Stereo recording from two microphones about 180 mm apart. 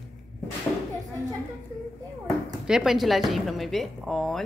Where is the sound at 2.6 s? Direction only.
5° right (ahead or behind).